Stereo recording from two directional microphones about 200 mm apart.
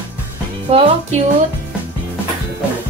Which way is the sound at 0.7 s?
30° right (ahead or behind).